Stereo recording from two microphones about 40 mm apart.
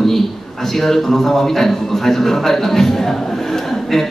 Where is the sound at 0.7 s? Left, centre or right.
Centre.